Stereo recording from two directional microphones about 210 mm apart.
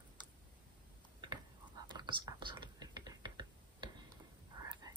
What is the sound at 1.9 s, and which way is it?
Computer keyboard, 20° right (ahead or behind).